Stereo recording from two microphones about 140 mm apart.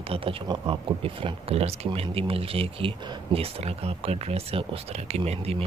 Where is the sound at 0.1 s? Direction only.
40° right (ahead or behind).